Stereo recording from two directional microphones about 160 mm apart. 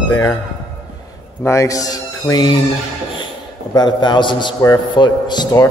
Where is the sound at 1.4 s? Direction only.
15° left (ahead or behind).